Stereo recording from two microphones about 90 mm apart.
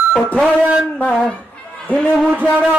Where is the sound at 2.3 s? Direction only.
15° right (ahead or behind).